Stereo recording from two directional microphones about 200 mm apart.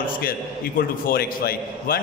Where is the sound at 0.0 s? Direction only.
45° left (ahead or behind).